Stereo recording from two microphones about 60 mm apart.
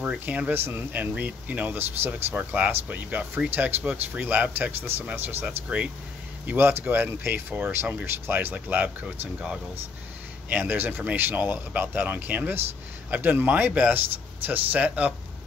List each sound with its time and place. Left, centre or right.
0.2 s speech: right
3.8 s speech: centre
4.2 s speech: right
8.5 s speech: right
10.5 s speech: right